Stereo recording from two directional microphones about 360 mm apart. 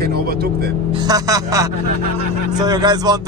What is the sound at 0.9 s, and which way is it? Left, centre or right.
Speech, centre.